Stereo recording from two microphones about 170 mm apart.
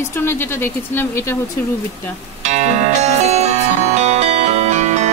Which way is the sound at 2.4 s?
40° right (ahead or behind).